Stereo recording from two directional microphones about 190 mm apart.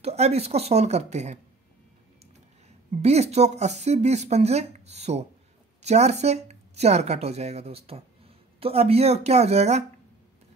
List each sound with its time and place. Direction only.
0.0 s speech: 35° right (ahead or behind)
2.9 s speech: 35° right (ahead or behind)